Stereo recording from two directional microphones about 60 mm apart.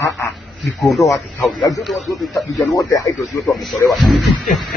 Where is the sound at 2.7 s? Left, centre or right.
Left.